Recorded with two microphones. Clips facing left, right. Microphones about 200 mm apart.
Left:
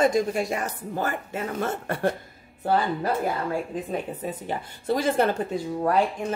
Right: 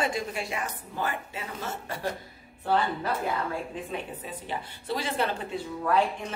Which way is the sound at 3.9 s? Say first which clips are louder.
Left 6 dB; 45° left (ahead or behind).